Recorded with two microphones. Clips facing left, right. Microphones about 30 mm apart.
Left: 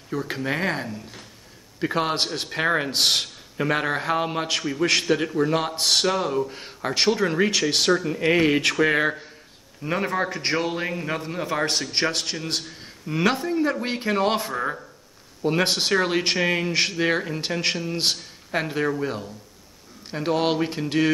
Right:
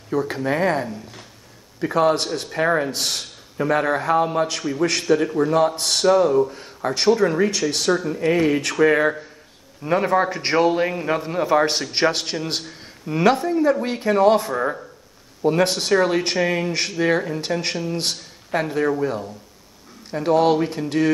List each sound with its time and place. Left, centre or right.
0.3 s a man's voice: centre; by 2.6 s left
2.6 s a man's voice: left
2.9 s speech: left
3.5 s a man's voice: left
6.5 s speech: left
6.9 s a man's voice: centre
9.8 s a man's voice: centre
13.8 s a man's voice: left
14.5 s a man's voice: centre
15.4 s speech: centre
20.1 s a man's voice: centre